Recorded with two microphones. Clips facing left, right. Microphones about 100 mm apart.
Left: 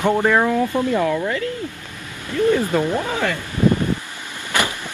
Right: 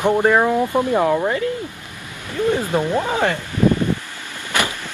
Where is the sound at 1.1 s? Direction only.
35° right (ahead or behind).